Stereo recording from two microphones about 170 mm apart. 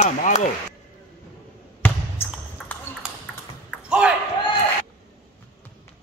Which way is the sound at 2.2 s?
15° left (ahead or behind).